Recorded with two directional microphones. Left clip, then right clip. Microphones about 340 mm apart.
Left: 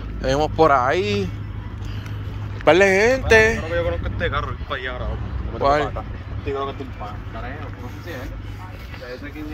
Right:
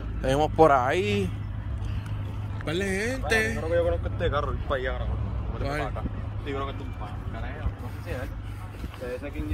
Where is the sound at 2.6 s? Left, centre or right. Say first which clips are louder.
Left 15 dB; centre.